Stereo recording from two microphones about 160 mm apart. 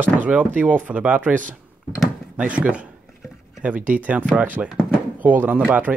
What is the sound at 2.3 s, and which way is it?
Speech, 10° right (ahead or behind).